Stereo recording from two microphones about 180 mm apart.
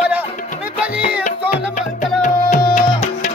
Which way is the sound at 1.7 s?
45° left (ahead or behind).